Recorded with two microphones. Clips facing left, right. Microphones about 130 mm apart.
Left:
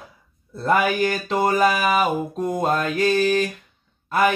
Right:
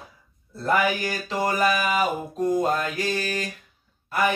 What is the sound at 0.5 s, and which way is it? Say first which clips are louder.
Mantra: left 3 dB; 60° left (ahead or behind).